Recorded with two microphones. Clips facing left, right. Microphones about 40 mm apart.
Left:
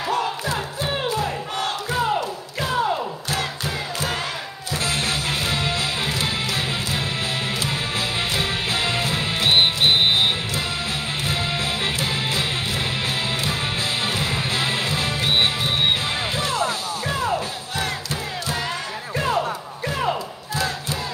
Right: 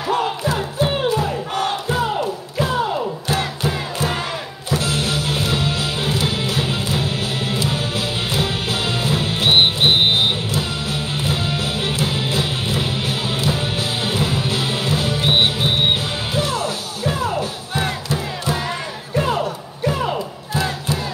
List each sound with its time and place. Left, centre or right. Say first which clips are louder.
0.1 s music: right 5 dB; right
1.5 s crowd: right 4 dB; right
4.7 s music: right 3 dB; left
9.4 s music: right 2 dB; right
11.2 s music: right 1 dB; left
14.0 s music: right 3 dB; left
15.2 s music: right 3 dB; right
19.1 s music: right 3 dB; centre
20.5 s crowd: right 3 dB; right